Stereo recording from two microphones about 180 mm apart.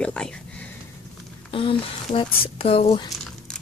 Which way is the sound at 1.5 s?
30° left (ahead or behind).